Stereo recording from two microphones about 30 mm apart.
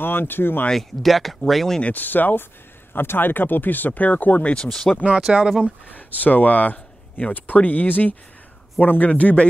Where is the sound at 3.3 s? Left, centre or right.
Left.